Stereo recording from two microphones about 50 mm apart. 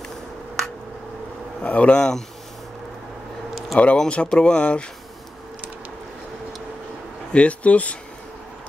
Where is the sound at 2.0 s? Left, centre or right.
Centre.